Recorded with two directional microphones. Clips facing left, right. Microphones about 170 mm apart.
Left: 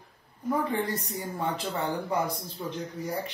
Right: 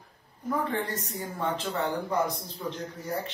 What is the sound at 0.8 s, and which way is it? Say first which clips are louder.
Speech: left 2 dB; 10° left (ahead or behind).